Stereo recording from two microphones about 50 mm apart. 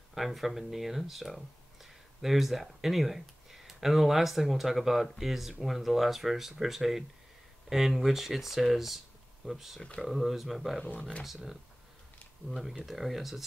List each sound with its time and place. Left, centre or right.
0.1 s speech: centre
11.0 s speech: left
11.2 s speech: centre